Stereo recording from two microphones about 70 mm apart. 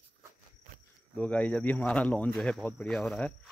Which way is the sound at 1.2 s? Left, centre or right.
Centre.